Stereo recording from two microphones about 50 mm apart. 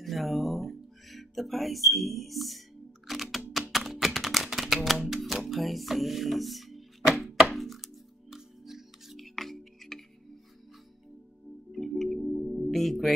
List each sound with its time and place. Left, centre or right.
0.0 s music: centre
3.1 s typing: centre
3.7 s a sound: centre
5.0 s music: centre
5.5 s speech: centre
7.5 s music: centre
11.7 s music: centre